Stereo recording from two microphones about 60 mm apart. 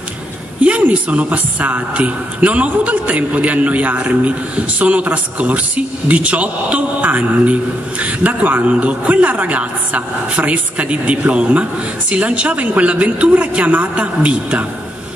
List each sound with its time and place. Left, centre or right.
0.6 s speech: right